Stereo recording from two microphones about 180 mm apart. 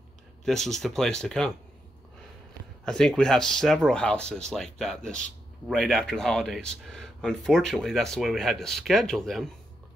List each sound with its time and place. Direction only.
0.5 s speech: centre (ahead or behind)
2.8 s speech: 5° left (ahead or behind)